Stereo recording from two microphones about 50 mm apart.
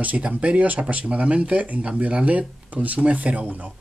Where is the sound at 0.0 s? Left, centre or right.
Right.